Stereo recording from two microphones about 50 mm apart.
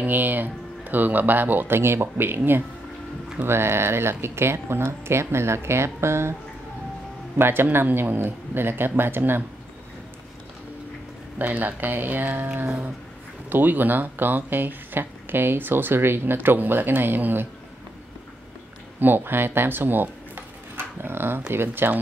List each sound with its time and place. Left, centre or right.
0.0 s speech: right
1.7 s speech: right
7.3 s speech: right
11.3 s speech: right
18.9 s speech: right